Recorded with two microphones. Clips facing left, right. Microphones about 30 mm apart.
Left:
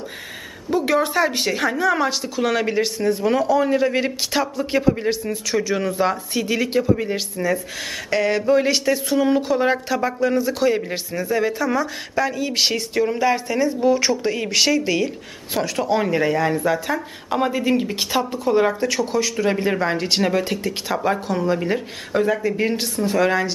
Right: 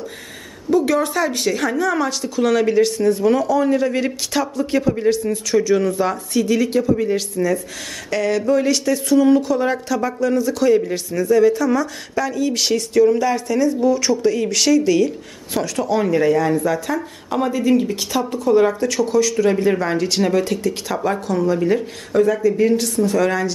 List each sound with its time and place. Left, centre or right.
0.7 s a woman's voice: left